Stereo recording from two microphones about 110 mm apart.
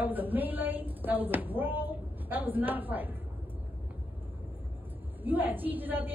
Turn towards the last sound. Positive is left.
turn(degrees=-15)  # may be behind; listen again after turning